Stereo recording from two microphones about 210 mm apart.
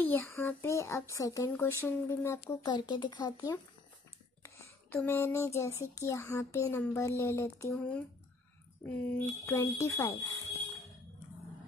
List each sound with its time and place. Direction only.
0.0 s speech: 10° left (ahead or behind)